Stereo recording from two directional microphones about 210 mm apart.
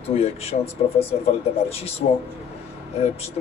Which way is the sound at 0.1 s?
30° left (ahead or behind).